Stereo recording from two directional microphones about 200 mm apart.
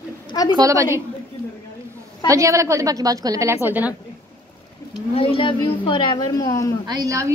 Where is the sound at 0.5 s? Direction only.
15° right (ahead or behind).